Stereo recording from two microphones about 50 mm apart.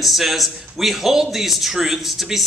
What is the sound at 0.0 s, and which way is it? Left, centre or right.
A man's voice, centre.